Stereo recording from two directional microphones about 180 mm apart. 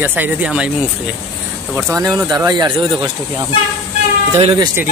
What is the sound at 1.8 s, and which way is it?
Speech, 10° right (ahead or behind).